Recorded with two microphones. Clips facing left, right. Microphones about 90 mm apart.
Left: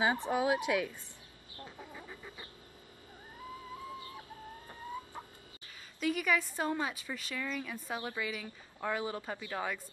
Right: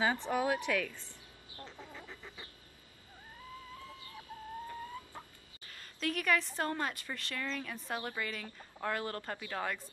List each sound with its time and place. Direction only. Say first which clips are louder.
0.0 s a woman's voice: left 1 dB; 15° left (ahead or behind)
1.6 s chicken: left 1 dB; 15° left (ahead or behind)
3.8 s music: left 6 dB; 20° left (ahead or behind)
5.8 s a woman's voice: left 3 dB; 5° left (ahead or behind)